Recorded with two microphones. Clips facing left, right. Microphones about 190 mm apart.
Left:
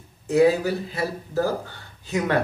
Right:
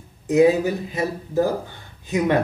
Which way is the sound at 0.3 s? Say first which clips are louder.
Right 2 dB; 15° right (ahead or behind).